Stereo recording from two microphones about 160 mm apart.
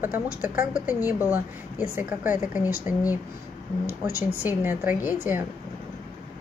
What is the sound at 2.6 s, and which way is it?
Speech, 20° left (ahead or behind).